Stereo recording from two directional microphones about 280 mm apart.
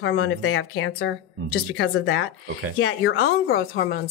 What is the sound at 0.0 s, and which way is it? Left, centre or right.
Speech, left.